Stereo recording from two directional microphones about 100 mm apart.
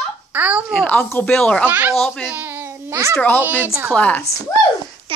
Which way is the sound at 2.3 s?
15° right (ahead or behind).